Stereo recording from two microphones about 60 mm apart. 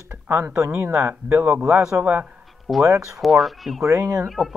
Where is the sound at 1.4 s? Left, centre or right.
Centre.